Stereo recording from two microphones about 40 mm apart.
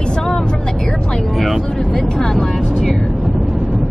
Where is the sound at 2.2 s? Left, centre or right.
Centre.